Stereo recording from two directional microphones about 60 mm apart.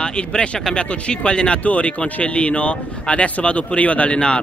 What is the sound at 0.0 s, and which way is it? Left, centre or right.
Speech, centre.